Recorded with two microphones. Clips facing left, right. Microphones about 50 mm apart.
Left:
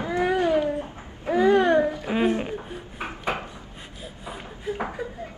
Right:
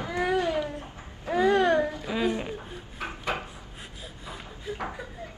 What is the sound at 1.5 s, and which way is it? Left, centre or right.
Babbling, centre.